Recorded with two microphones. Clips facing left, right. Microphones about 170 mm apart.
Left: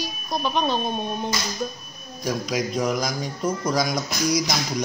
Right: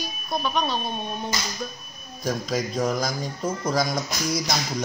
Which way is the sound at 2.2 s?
15° left (ahead or behind).